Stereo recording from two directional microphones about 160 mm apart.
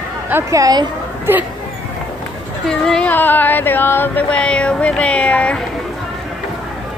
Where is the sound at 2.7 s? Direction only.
5° left (ahead or behind).